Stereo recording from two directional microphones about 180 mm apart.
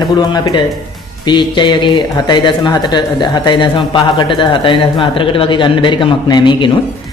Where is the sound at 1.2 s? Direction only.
25° left (ahead or behind).